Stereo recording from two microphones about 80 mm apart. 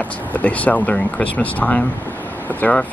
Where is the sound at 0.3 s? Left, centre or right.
Centre.